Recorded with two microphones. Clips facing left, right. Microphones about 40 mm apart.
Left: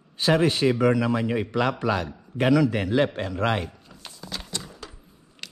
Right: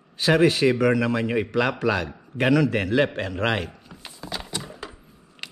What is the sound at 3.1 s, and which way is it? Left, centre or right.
Speech, right.